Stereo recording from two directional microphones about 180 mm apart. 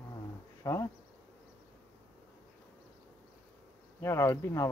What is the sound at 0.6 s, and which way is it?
Speech, 15° left (ahead or behind).